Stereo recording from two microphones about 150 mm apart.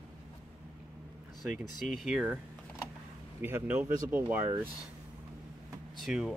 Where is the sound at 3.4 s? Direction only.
15° right (ahead or behind).